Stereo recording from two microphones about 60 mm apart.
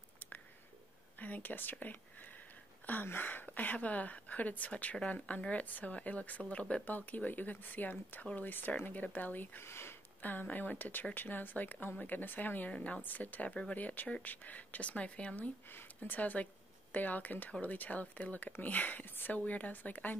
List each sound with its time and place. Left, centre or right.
1.2 s speech: left
9.7 s speech: left
10.2 s speech: left
13.5 s speech: centre
13.7 s speech: left